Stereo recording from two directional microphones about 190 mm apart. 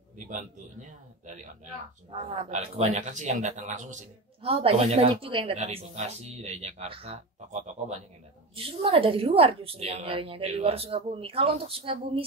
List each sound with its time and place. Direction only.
0.3 s a man's voice: 40° right (ahead or behind)
2.5 s a man's voice: 35° right (ahead or behind)